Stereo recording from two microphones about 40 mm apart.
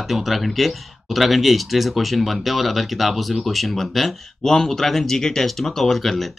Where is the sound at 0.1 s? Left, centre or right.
Centre.